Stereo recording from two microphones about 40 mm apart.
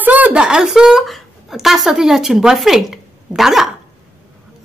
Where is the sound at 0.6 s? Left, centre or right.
Centre.